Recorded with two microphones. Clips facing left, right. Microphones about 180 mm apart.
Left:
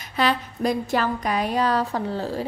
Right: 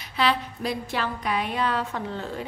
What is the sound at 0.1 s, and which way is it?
A woman's voice, 45° left (ahead or behind).